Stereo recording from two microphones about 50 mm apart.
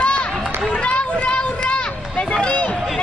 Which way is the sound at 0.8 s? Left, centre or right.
Left.